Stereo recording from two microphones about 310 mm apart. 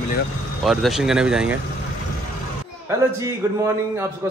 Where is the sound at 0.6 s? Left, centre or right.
Centre.